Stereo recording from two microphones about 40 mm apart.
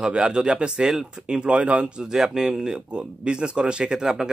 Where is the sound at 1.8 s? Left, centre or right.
Centre.